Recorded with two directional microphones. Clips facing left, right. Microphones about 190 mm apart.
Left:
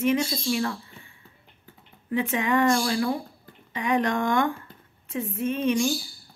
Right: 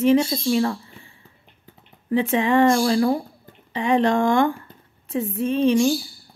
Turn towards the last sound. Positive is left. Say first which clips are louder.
# right 6 dB
turn(degrees=-30)  # may be behind; listen again after turning